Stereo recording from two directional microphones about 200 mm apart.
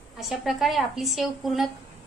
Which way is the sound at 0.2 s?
Centre (ahead or behind).